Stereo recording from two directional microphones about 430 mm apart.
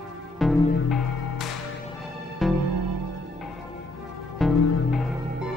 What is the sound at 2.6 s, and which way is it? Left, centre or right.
Music, right.